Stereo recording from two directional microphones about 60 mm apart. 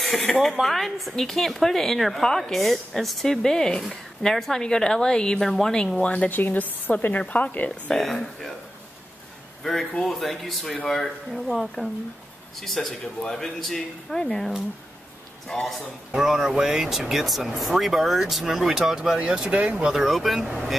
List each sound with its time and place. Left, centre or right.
0.0 s a woman's voice: centre
6.3 s a woman's voice: left
7.9 s a woman's voice: centre
9.6 s a woman's voice: centre; by 19.9 s right
19.9 s speech: centre